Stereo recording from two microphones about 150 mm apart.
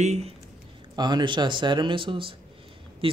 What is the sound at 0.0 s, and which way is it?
Speech, 45° right (ahead or behind).